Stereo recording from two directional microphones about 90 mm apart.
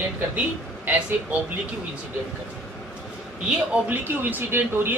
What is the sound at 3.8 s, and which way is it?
Speech, 20° right (ahead or behind).